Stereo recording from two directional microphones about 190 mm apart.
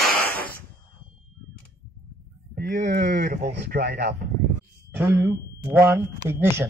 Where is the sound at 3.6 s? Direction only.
55° right (ahead or behind).